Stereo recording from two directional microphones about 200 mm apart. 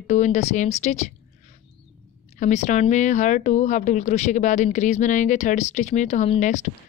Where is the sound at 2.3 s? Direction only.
35° left (ahead or behind).